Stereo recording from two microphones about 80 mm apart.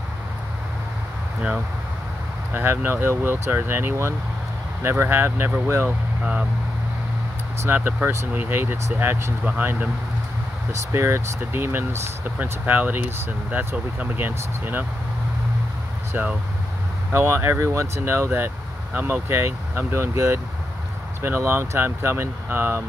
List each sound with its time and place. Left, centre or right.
2.5 s speech: right
7.6 s speech: right
10.9 s speech: right
16.1 s speech: right